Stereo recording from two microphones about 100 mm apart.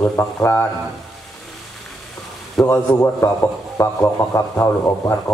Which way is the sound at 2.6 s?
25° left (ahead or behind).